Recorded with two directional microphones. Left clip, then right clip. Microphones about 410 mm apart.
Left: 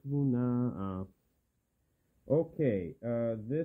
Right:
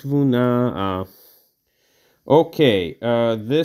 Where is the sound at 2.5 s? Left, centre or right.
Right.